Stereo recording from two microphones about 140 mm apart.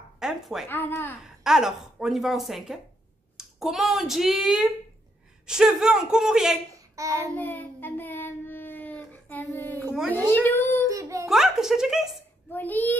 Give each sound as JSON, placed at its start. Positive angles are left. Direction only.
{"t": 0.2, "sound": "a woman's voice", "side_deg": -5}
{"t": 0.7, "sound": "speech", "side_deg": 15}
{"t": 1.2, "sound": "a woman's voice", "side_deg": -5}
{"t": 7.0, "sound": "child singing", "side_deg": -25}
{"t": 7.3, "sound": "child singing", "side_deg": 15}
{"t": 10.1, "sound": "a sound", "side_deg": 10}
{"t": 10.9, "sound": "a sound", "side_deg": -25}
{"t": 11.2, "sound": "a sound", "side_deg": -5}
{"t": 12.4, "sound": "speech", "side_deg": 15}